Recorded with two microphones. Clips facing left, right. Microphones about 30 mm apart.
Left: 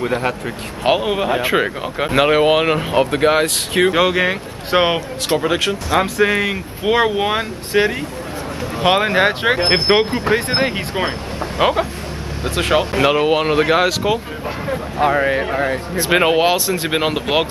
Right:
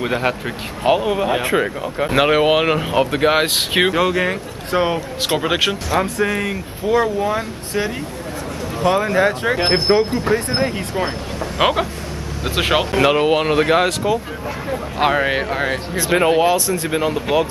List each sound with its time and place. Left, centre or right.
0.0 s speech: centre
0.8 s speech: left
2.1 s speech: centre
3.4 s speech: right
3.9 s speech: left
4.6 s speech: left
5.4 s speech: centre
6.2 s speech: left
6.8 s speech: left
11.5 s speech: centre
12.9 s speech: centre
15.1 s speech: right
16.0 s speech: left
16.4 s speech: left